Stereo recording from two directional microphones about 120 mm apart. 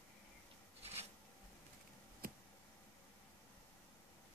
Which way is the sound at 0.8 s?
60° right (ahead or behind).